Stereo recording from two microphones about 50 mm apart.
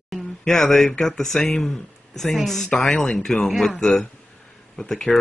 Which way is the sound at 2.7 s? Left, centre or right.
Left.